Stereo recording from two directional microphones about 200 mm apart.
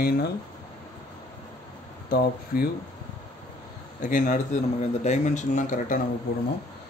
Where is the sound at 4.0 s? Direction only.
40° left (ahead or behind).